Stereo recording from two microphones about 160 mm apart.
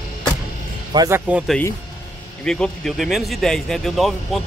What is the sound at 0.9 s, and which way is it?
Speech, 25° right (ahead or behind).